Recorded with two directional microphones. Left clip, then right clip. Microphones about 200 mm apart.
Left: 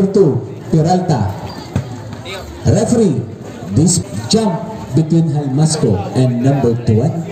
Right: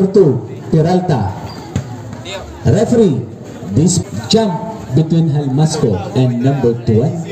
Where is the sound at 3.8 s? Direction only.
40° right (ahead or behind).